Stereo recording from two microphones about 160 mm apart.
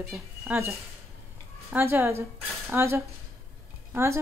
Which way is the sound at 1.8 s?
15° right (ahead or behind).